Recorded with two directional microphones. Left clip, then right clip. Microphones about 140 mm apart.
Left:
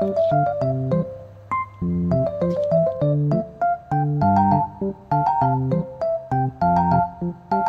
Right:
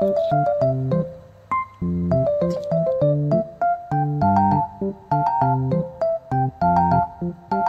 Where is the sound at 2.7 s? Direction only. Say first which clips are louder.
Right 2 dB; centre (ahead or behind).